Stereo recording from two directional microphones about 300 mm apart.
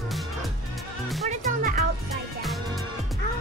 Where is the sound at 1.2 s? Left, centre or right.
Right.